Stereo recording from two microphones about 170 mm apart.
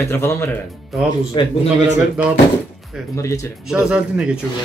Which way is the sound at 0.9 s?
Centre (ahead or behind).